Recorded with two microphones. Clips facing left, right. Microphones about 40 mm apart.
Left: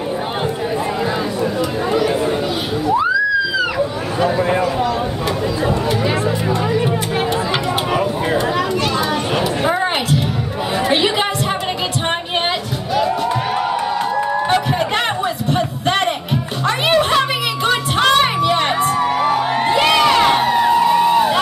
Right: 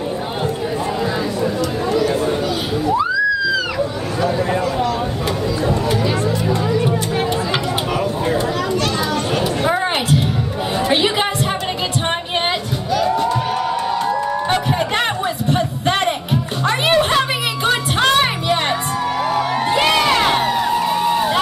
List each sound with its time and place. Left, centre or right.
4.2 s a sound: left
9.7 s music: centre
10.9 s chatter: centre
13.3 s a sound: left
14.5 s music: centre
19.0 s music: left
19.7 s crowd: centre
20.5 s music: centre